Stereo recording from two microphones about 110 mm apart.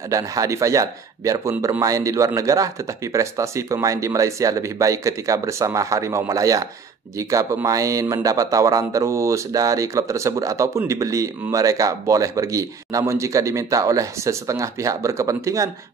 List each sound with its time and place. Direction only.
0.1 s speech: 30° right (ahead or behind)